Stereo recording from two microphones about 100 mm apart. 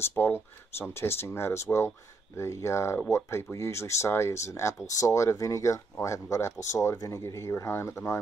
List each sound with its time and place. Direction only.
0.0 s speech: 20° left (ahead or behind)